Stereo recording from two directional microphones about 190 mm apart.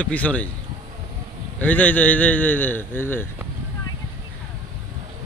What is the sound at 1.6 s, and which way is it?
A man's voice, 10° left (ahead or behind).